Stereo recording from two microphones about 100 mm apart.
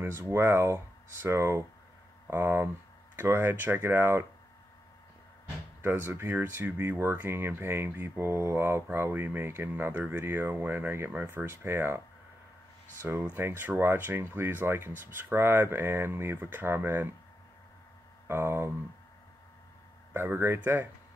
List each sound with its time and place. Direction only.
0.0 s speech: 25° right (ahead or behind)
5.8 s speech: 25° right (ahead or behind)
13.2 s speech: 20° right (ahead or behind)
18.2 s speech: 25° right (ahead or behind)
20.1 s speech: 25° right (ahead or behind)